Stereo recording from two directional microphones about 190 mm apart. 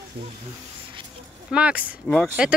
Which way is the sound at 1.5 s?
5° right (ahead or behind).